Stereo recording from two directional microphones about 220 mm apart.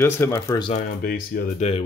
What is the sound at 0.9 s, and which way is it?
Speech, 45° left (ahead or behind).